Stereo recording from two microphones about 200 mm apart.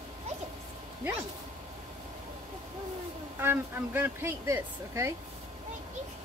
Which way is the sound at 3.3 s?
10° right (ahead or behind).